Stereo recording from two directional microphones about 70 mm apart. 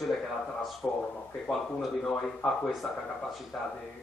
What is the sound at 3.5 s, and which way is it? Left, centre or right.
Speech, centre.